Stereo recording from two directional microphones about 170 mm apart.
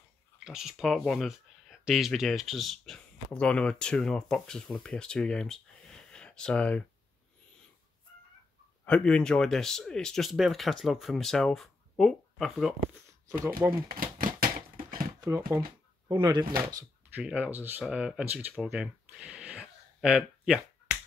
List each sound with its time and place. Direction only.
0.4 s speech: 5° right (ahead or behind)
8.8 s speech: 5° left (ahead or behind)
13.3 s speech: 15° right (ahead or behind)
13.8 s typewriter: 60° right (ahead or behind)
15.1 s a sound: 15° right (ahead or behind)
16.1 s speech: 25° right (ahead or behind)
17.2 s speech: 5° right (ahead or behind)
18.5 s a sound: 5° right (ahead or behind)